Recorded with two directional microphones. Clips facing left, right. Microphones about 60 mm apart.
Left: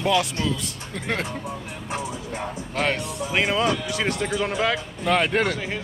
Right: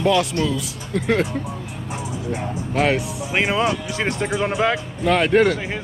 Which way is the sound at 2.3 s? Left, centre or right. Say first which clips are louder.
Right 8 dB; centre.